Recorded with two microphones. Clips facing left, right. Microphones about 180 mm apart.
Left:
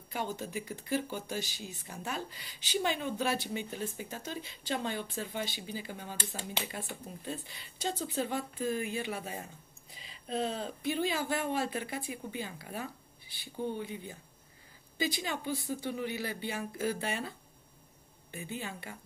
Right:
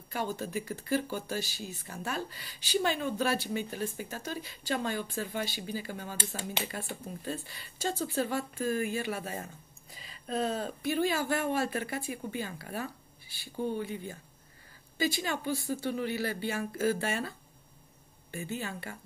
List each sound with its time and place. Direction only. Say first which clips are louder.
0.1 s speech: right 3 dB; 20° left (ahead or behind)
10.0 s a sound: right 2 dB; 45° right (ahead or behind)
10.8 s speech: right 2 dB; 20° left (ahead or behind)
18.3 s speech: right 3 dB; 20° left (ahead or behind)